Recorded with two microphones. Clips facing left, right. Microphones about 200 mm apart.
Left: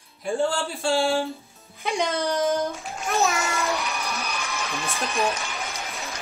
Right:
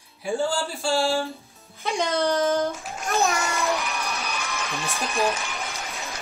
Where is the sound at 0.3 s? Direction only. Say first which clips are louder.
Left 1 dB; centre (ahead or behind).